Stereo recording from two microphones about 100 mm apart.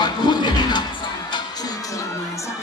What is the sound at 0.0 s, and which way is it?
Music, 50° left (ahead or behind).